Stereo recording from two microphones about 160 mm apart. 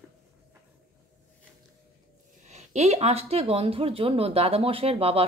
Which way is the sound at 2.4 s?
45° right (ahead or behind).